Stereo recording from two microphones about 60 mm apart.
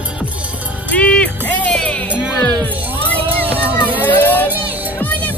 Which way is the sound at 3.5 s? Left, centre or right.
Left.